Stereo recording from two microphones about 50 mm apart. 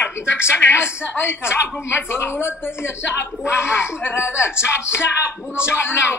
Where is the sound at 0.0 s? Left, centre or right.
Left.